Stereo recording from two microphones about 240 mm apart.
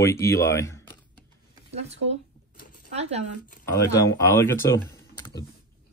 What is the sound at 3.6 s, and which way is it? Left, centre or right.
Speech, centre.